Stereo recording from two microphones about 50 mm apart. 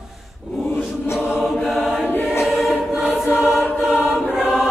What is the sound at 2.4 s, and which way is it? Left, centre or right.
Choir, centre.